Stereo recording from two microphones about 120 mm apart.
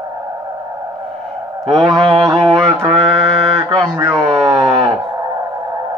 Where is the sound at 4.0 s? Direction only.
30° right (ahead or behind).